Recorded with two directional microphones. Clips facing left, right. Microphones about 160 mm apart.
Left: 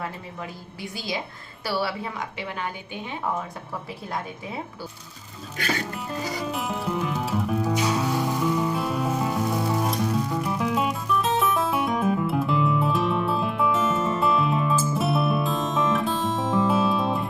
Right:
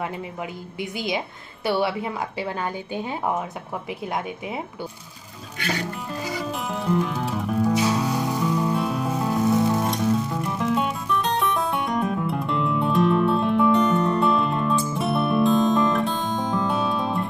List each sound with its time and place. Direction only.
0.4 s a woman's voice: 20° right (ahead or behind)
6.5 s music: centre (ahead or behind)